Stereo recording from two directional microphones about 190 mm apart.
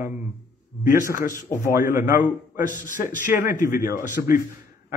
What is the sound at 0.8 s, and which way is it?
Speech, 45° left (ahead or behind).